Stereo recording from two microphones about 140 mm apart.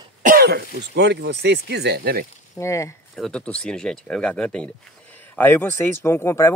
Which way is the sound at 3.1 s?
5° left (ahead or behind).